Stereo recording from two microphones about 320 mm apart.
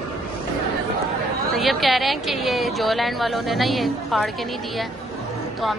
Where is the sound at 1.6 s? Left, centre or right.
Centre.